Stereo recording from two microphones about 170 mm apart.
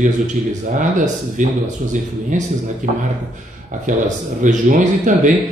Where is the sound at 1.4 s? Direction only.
50° right (ahead or behind).